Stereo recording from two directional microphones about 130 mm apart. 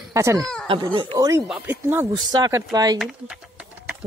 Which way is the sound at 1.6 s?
15° right (ahead or behind).